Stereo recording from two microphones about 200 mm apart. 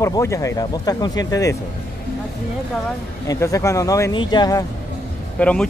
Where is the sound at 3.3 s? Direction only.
15° left (ahead or behind).